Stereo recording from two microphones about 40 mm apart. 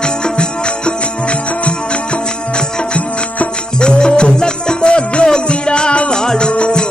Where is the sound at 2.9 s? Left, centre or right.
Left.